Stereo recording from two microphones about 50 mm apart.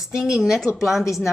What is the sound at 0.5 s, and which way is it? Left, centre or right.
Speech, centre.